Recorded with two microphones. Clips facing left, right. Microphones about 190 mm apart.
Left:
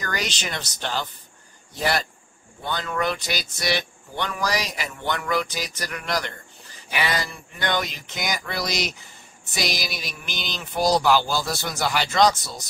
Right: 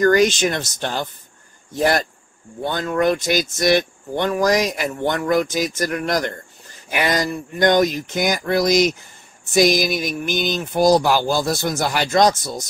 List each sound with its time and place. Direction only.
0.0 s speech: 50° right (ahead or behind)